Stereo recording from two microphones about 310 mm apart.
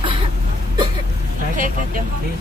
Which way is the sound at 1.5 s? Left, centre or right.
Right.